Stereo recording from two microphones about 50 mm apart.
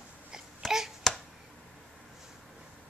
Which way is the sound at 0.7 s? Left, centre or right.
Centre.